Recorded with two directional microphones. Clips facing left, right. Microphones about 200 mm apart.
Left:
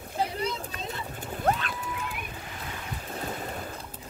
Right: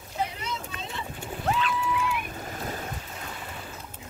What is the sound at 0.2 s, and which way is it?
Vehicle, 35° left (ahead or behind).